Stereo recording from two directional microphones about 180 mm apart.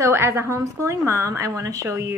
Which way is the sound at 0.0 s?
15° right (ahead or behind).